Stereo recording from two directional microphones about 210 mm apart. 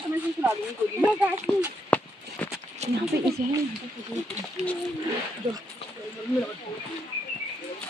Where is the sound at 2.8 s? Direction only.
30° right (ahead or behind).